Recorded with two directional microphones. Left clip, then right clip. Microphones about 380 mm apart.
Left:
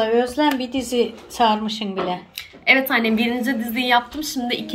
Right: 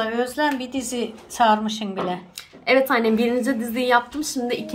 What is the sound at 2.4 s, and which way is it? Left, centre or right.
A woman's voice, centre.